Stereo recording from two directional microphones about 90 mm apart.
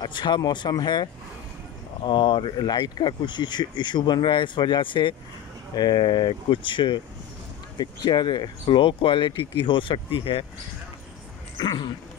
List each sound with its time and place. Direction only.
0.0 s speech: 55° left (ahead or behind)
2.0 s speech: 65° left (ahead or behind)
5.8 s speech: 50° left (ahead or behind)
7.7 s speech: 55° left (ahead or behind); by 10.4 s 70° left (ahead or behind)
11.5 s dog: 55° left (ahead or behind)